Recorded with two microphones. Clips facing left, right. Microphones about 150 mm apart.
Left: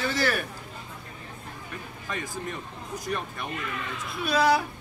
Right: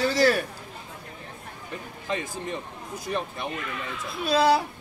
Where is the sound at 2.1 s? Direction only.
25° right (ahead or behind).